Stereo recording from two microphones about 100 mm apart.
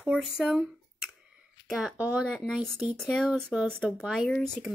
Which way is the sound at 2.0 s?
15° right (ahead or behind).